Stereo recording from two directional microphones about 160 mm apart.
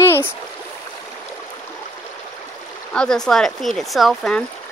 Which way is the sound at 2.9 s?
5° left (ahead or behind).